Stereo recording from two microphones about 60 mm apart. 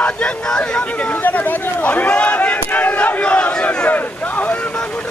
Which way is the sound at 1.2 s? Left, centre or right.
Left.